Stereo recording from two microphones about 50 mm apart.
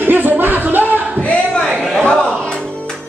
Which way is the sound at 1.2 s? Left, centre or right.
Left.